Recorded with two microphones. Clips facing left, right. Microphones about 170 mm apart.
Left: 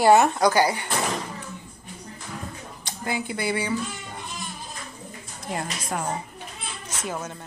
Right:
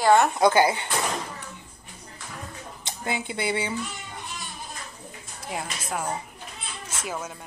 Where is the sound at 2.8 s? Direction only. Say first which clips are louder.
Left 1 dB; 20° right (ahead or behind).